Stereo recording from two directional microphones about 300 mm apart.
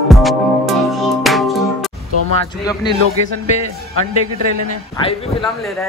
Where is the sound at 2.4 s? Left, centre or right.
Centre.